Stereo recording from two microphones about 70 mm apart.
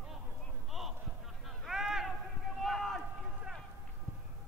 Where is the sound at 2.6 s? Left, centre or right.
Centre.